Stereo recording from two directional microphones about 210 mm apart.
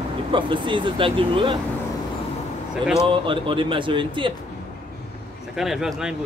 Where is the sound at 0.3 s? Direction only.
25° right (ahead or behind).